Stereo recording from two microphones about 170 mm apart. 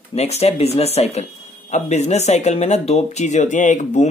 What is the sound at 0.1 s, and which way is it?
Speech, 40° left (ahead or behind).